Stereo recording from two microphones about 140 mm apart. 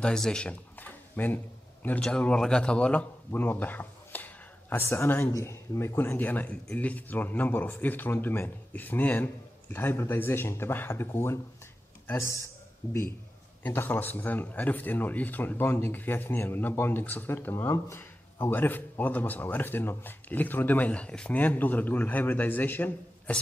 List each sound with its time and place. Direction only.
0.0 s a man's voice: 5° left (ahead or behind)
13.6 s speech: 10° left (ahead or behind)